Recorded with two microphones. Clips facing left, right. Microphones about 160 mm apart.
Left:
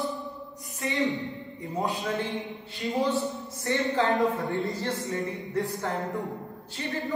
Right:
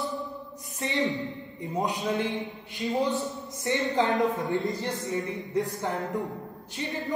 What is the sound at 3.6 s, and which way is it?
A man's voice, 20° right (ahead or behind).